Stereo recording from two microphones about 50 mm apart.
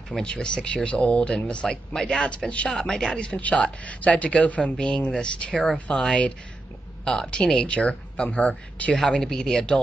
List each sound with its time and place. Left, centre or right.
0.2 s speech: centre
2.2 s speech: left
3.3 s speech: left
4.7 s speech: centre
8.9 s speech: centre